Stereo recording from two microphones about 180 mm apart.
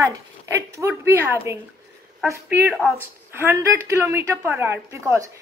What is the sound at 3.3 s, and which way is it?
A woman's voice, 15° right (ahead or behind).